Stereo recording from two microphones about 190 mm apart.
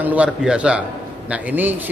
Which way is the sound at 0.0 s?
5° right (ahead or behind).